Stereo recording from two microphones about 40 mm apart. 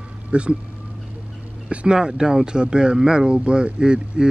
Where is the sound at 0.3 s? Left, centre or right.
Right.